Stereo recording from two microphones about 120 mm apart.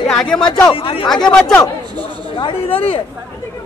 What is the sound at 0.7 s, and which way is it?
Speech, 50° left (ahead or behind).